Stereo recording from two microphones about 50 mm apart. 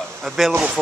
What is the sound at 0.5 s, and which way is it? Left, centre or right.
Speech, centre.